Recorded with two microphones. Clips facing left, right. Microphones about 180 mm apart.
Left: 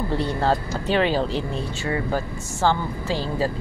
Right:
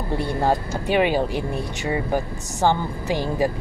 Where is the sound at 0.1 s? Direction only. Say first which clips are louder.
Right 2 dB; 10° right (ahead or behind).